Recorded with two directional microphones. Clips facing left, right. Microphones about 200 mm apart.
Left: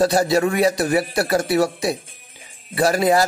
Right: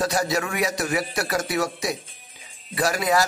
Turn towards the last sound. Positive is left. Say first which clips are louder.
# left 5 dB
turn(degrees=30)  # may be behind; listen again after turning